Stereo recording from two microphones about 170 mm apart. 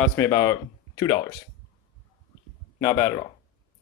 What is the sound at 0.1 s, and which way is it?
Speech, 15° left (ahead or behind).